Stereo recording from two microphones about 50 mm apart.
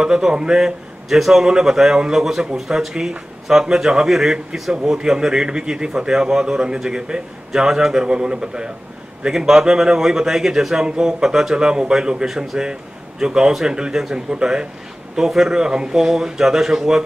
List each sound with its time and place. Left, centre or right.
0.0 s a man's voice: centre
12.3 s a man's voice: centre